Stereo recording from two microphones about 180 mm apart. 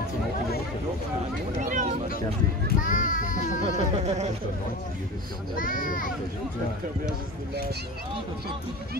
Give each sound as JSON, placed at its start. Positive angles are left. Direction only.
{"t": 1.6, "sound": "speech", "side_deg": -45}
{"t": 2.8, "sound": "child singing", "side_deg": 45}
{"t": 3.7, "sound": "speech", "side_deg": -40}
{"t": 5.6, "sound": "child singing", "side_deg": 50}